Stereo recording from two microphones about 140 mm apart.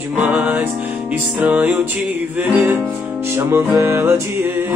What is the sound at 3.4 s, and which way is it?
Mantra, 15° right (ahead or behind).